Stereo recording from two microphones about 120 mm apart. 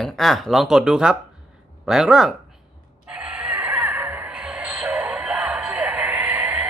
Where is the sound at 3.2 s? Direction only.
10° right (ahead or behind).